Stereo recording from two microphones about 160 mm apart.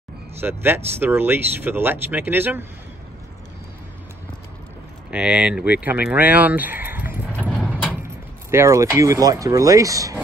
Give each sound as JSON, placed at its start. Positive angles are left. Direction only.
{"t": 0.4, "sound": "speech", "side_deg": -15}
{"t": 5.1, "sound": "speech", "side_deg": -5}
{"t": 7.3, "sound": "a sound", "side_deg": 10}
{"t": 8.5, "sound": "speech", "side_deg": -15}